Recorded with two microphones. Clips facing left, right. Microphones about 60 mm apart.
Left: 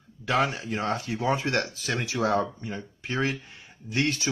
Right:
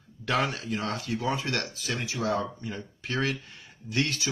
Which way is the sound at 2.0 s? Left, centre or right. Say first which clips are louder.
Left 4 dB; left.